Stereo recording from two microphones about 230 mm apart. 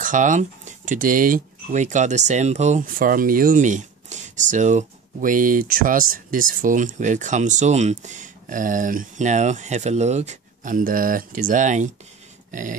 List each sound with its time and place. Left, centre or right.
0.0 s speech: right
12.4 s dog: right